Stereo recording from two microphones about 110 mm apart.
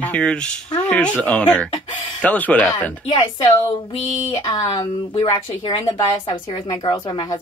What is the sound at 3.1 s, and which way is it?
Speech, 40° left (ahead or behind).